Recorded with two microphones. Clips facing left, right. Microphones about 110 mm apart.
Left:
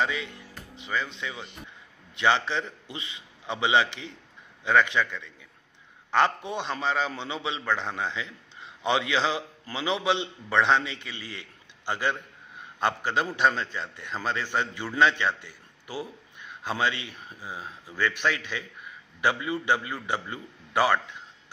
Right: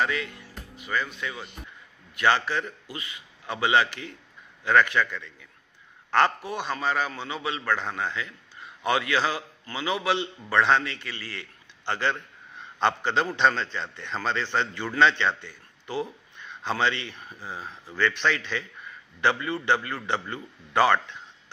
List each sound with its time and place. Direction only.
0.0 s a man's voice: 20° left (ahead or behind)